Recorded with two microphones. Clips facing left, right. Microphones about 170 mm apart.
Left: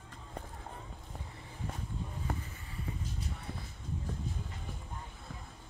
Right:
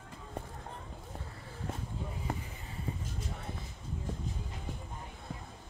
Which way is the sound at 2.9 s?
30° right (ahead or behind).